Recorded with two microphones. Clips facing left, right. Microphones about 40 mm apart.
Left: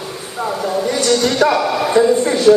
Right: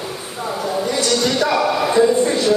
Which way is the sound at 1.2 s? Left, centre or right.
Left.